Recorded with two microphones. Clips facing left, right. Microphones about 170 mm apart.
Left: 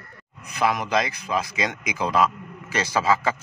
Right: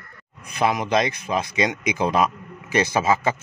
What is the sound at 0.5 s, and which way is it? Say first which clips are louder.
A man's voice: right 2 dB; 20° right (ahead or behind).